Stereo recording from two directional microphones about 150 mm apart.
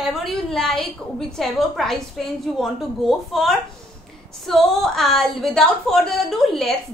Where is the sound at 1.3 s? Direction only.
Centre (ahead or behind).